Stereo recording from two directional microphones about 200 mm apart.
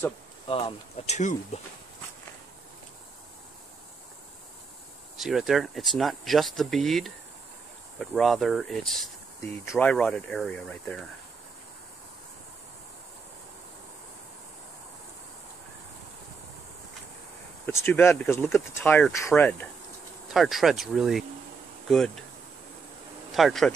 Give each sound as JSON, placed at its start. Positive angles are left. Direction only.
{"t": 0.5, "sound": "speech", "side_deg": 25}
{"t": 5.1, "sound": "speech", "side_deg": 0}
{"t": 17.6, "sound": "speech", "side_deg": 10}
{"t": 20.2, "sound": "speech", "side_deg": 0}
{"t": 23.3, "sound": "speech", "side_deg": 0}